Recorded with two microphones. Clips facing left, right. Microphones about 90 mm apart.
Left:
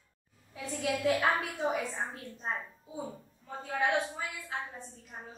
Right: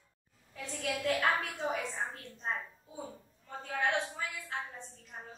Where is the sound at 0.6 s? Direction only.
5° left (ahead or behind).